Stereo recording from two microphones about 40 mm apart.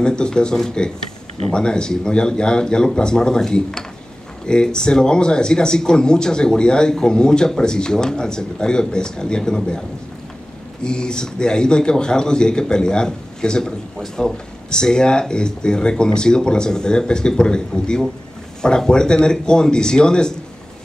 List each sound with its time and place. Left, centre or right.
0.0 s speech: left
10.8 s speech: left